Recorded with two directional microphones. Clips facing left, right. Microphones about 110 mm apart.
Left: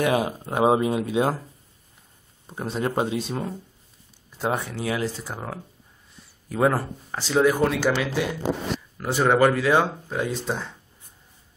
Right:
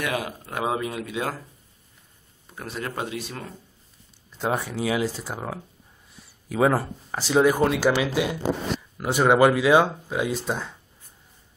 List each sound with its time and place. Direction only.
0.0 s speech: 25° left (ahead or behind)
2.4 s speech: 25° left (ahead or behind)
4.4 s speech: centre (ahead or behind)